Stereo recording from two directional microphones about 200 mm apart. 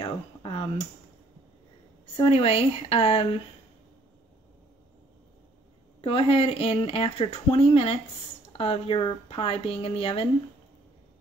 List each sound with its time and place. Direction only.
0.0 s a sound: 25° left (ahead or behind)
2.1 s speech: 25° left (ahead or behind)
5.9 s speech: 30° left (ahead or behind)